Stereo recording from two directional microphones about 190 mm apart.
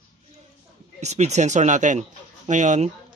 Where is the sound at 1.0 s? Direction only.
35° right (ahead or behind).